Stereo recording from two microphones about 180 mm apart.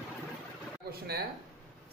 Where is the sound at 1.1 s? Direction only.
60° right (ahead or behind).